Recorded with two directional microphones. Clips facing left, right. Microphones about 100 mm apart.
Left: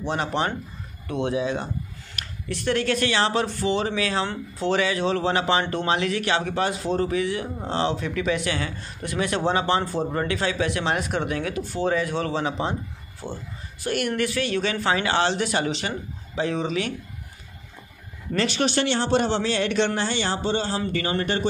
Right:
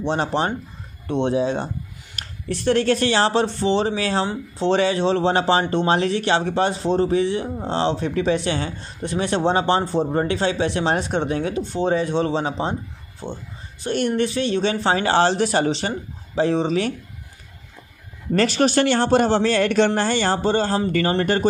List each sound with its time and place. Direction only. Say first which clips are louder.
0.0 s speech: right 4 dB; 30° right (ahead or behind)
18.3 s speech: right 5 dB; 40° right (ahead or behind)